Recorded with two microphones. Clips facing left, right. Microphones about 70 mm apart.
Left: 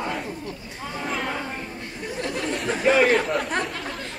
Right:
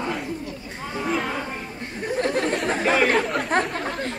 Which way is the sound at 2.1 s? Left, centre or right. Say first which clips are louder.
Right 5 dB; right.